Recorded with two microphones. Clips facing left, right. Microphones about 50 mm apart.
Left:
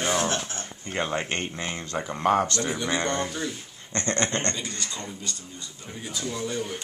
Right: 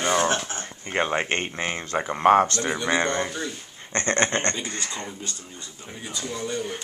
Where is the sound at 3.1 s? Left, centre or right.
Centre.